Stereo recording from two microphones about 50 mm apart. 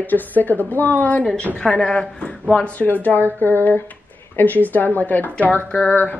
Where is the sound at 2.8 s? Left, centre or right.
Left.